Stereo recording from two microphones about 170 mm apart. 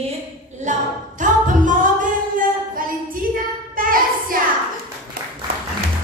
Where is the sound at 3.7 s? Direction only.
55° right (ahead or behind).